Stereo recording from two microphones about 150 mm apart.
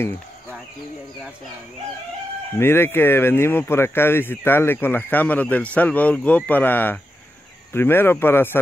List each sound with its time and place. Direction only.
2.6 s speech: 15° left (ahead or behind)